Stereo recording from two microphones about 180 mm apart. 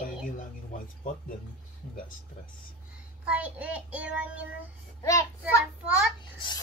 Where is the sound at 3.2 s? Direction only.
10° right (ahead or behind).